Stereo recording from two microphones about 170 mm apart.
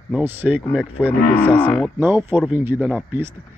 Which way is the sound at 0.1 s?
10° right (ahead or behind).